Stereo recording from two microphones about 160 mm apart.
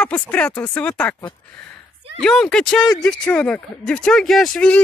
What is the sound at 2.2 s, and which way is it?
Speech, 5° left (ahead or behind).